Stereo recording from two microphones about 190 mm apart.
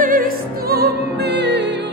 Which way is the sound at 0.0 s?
45° right (ahead or behind).